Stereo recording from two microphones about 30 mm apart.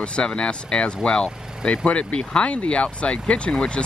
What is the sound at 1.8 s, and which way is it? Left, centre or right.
Speech, left.